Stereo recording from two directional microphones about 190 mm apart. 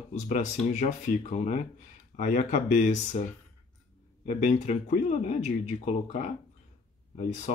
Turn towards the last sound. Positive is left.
turn(degrees=40)  # may be behind; listen again after turning